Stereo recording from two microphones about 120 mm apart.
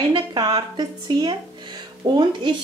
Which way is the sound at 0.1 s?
40° right (ahead or behind).